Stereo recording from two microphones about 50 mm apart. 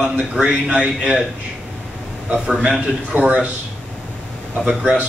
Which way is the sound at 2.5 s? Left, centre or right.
Centre.